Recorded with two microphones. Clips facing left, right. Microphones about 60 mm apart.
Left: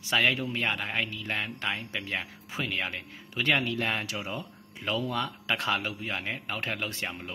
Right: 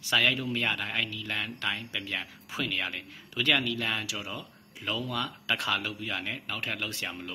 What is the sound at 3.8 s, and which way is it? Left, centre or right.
A man's voice, left.